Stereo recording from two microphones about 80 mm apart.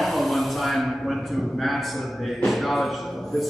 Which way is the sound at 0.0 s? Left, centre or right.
Centre.